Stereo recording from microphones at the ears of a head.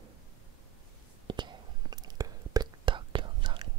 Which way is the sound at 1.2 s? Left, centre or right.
Right.